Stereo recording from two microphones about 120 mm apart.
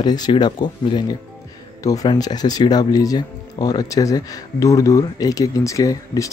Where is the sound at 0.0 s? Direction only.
35° left (ahead or behind).